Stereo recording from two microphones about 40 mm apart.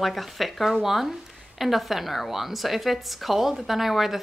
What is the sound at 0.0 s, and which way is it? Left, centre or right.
A woman's voice, centre.